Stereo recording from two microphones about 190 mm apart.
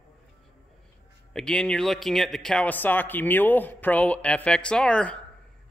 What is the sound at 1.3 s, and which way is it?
Speech, 5° left (ahead or behind).